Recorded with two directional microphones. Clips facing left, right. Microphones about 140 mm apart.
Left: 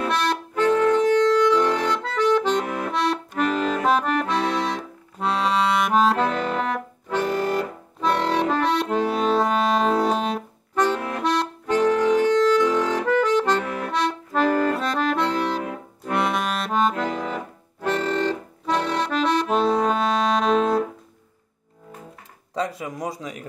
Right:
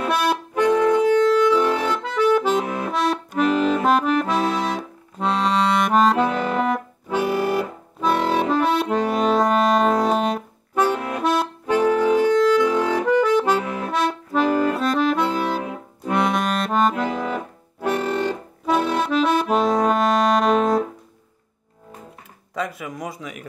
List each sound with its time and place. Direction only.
0.1 s music: 10° right (ahead or behind)
2.9 s accordion: 5° right (ahead or behind)
3.8 s accordion: centre (ahead or behind)
6.1 s music: 10° right (ahead or behind)
10.7 s accordion: 10° right (ahead or behind)
16.9 s music: 10° right (ahead or behind)
22.5 s a sound: 30° left (ahead or behind)